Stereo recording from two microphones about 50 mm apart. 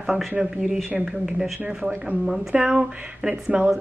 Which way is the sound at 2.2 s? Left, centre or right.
Centre.